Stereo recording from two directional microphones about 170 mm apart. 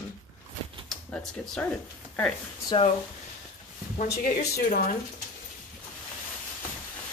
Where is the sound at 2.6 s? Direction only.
30° left (ahead or behind).